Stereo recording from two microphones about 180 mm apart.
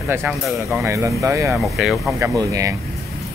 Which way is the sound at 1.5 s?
Centre (ahead or behind).